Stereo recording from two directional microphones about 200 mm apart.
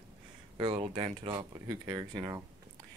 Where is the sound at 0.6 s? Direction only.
25° right (ahead or behind).